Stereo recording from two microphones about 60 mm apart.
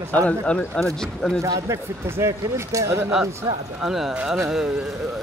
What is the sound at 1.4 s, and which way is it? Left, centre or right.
Speech, right.